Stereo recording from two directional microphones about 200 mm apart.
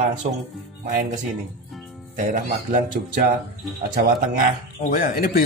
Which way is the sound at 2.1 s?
45° right (ahead or behind).